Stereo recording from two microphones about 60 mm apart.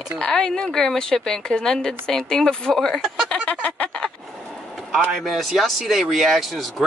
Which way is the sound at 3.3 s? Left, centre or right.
Left.